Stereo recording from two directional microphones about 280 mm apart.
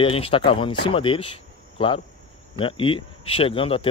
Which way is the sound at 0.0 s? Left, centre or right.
Centre.